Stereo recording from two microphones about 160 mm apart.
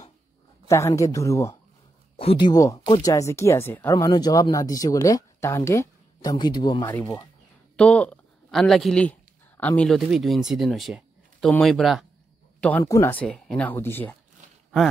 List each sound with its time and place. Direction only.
0.7 s a man's voice: 20° left (ahead or behind)
2.1 s a man's voice: 35° left (ahead or behind); by 3.9 s 15° left (ahead or behind)
3.9 s a man's voice: 25° left (ahead or behind)
6.9 s speech: 10° left (ahead or behind)
12.5 s a sound: 10° left (ahead or behind)
12.8 s a man's voice: 20° left (ahead or behind)
13.2 s speech: 5° left (ahead or behind)